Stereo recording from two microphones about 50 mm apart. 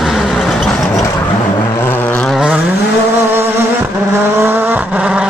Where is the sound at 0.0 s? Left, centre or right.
Centre.